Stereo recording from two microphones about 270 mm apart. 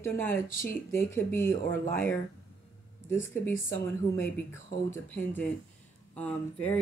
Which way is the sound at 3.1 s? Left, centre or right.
Centre.